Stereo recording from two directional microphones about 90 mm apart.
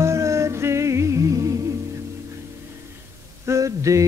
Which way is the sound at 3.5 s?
35° right (ahead or behind).